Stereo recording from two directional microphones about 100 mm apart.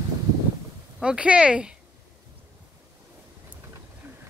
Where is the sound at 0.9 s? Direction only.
10° right (ahead or behind).